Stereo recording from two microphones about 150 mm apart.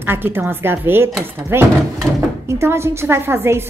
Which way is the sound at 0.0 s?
15° right (ahead or behind).